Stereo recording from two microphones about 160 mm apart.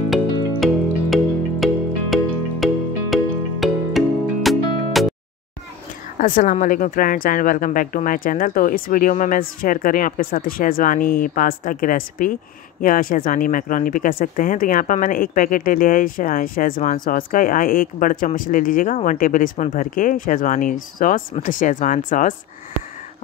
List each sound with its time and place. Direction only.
0.6 s music: centre (ahead or behind)
6.1 s speech: 60° left (ahead or behind)